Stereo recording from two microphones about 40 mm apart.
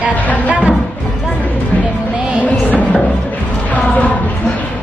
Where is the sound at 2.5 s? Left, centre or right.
Left.